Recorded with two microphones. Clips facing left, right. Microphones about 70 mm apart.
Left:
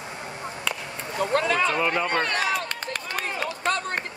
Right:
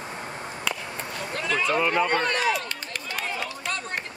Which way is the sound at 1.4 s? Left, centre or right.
Left.